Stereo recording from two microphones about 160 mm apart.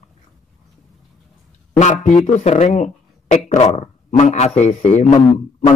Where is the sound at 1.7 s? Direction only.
50° left (ahead or behind).